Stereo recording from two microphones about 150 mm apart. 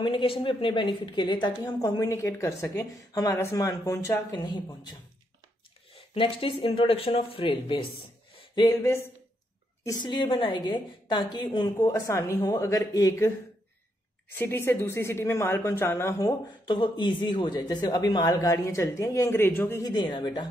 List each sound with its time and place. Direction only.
0.0 s a woman's voice: 35° left (ahead or behind)
5.9 s speech: 35° left (ahead or behind)
8.5 s a woman's voice: 20° left (ahead or behind)
9.8 s a woman's voice: 30° left (ahead or behind)
14.3 s a woman's voice: 15° left (ahead or behind)
19.8 s a woman's voice: 30° left (ahead or behind)